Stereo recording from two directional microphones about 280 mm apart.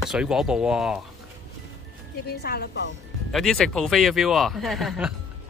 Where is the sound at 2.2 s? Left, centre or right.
Left.